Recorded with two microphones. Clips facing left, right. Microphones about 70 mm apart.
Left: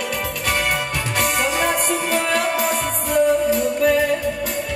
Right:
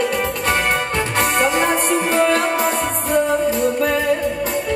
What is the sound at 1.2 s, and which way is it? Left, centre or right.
Music, right.